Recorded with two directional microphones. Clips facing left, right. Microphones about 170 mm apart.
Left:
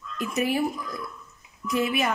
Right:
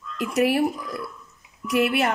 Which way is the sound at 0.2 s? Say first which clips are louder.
Right 4 dB; 75° right (ahead or behind).